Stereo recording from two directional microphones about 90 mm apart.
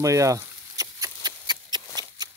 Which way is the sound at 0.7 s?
40° right (ahead or behind).